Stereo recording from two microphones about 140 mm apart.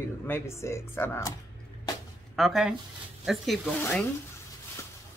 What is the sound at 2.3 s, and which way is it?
Speech, centre (ahead or behind).